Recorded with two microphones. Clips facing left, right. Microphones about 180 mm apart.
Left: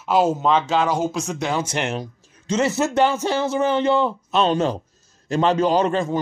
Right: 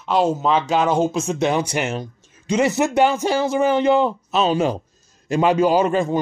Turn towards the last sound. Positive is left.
turn(degrees=-10)  # may be behind; listen again after turning